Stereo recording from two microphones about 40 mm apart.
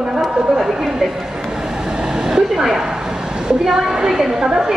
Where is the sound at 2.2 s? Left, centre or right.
Centre.